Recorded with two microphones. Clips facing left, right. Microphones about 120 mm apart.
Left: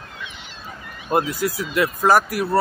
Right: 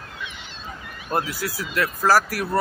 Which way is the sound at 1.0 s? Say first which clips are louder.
Left 5 dB; 20° left (ahead or behind).